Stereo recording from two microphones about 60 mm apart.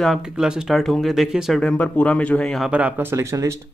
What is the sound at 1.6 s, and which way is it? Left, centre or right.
Speech, left.